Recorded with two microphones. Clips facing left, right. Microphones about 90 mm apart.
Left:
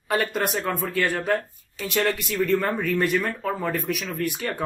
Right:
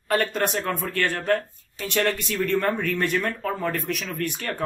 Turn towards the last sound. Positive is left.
turn(degrees=5)  # may be behind; listen again after turning